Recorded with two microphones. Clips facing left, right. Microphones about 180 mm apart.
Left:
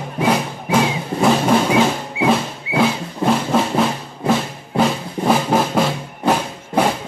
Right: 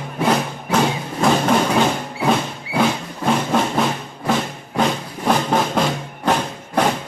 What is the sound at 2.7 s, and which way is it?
Music, 20° left (ahead or behind).